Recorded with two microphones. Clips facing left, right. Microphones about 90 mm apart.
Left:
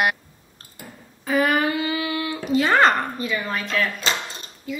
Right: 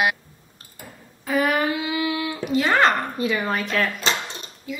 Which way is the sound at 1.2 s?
Centre (ahead or behind).